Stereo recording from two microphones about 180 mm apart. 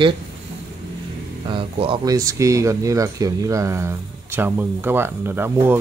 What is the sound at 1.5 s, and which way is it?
Speech, 30° right (ahead or behind).